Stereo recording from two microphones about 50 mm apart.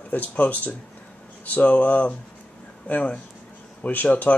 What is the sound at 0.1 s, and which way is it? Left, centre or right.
Speech, left.